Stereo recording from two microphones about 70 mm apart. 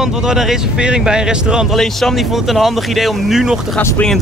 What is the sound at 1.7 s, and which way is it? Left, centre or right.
Speech, centre.